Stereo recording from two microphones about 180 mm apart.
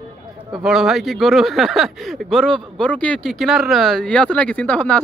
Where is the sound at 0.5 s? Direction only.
Centre (ahead or behind).